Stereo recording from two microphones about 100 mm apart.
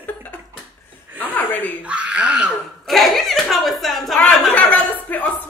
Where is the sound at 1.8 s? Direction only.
10° right (ahead or behind).